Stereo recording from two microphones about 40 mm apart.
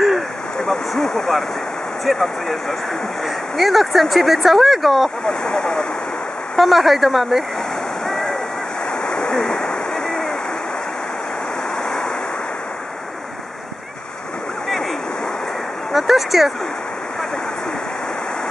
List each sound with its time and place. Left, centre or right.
0.7 s a sound: centre
2.0 s speech: centre
3.5 s speech: centre
5.4 s speech: centre
6.5 s speech: centre
8.1 s waves: centre
9.0 s waterfall: left
15.9 s a sound: centre